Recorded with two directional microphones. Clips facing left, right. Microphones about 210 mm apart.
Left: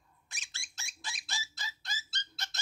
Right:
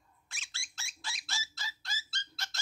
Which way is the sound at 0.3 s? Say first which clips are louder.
Even; 20° left (ahead or behind).